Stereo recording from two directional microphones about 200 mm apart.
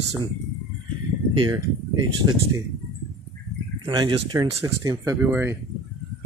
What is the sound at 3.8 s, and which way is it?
Speech, 25° right (ahead or behind).